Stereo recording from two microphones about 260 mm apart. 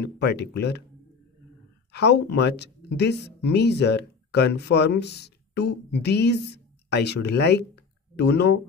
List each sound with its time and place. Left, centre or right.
0.0 s speech: left
1.9 s speech: left